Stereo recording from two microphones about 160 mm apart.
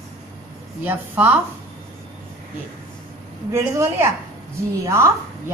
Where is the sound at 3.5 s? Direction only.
15° right (ahead or behind).